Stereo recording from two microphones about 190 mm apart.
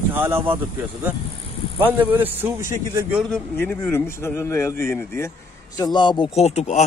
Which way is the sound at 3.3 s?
10° left (ahead or behind).